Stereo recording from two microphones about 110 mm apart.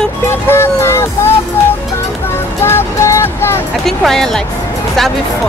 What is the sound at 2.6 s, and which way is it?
Music, 25° left (ahead or behind).